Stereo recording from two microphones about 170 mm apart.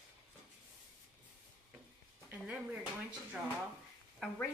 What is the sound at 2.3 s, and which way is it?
Speech, 10° right (ahead or behind).